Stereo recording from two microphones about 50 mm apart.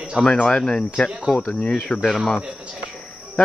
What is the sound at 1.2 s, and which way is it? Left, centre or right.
Speech, centre.